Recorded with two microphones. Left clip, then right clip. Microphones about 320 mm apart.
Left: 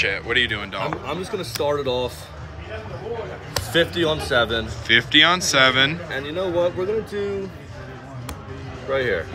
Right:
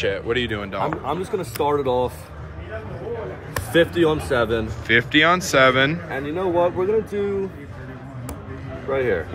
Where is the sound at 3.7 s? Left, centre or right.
Right.